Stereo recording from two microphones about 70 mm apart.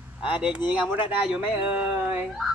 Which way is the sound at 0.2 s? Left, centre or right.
Centre.